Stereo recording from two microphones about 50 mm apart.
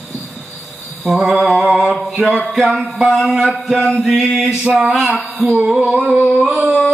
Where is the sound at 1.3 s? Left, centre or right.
Centre.